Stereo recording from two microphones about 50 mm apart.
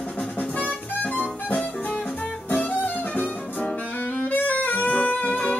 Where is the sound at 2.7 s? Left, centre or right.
Left.